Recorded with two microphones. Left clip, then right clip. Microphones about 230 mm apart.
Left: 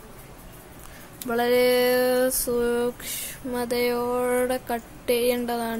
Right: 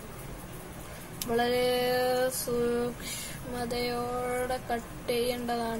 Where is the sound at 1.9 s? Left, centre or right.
Left.